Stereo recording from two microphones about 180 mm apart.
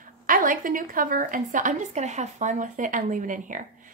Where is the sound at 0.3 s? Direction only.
50° right (ahead or behind).